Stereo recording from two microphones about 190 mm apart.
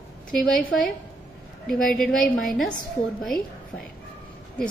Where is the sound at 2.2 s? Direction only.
45° left (ahead or behind).